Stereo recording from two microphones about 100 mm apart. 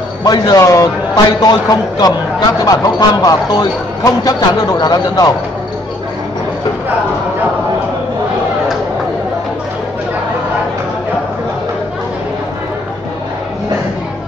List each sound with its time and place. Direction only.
0.2 s speech: 40° left (ahead or behind)